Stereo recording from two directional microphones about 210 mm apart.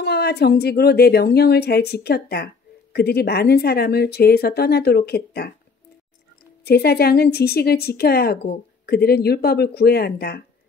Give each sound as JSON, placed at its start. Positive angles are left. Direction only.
{"t": 0.0, "sound": "a woman's voice", "side_deg": 50}
{"t": 6.6, "sound": "a woman's voice", "side_deg": 50}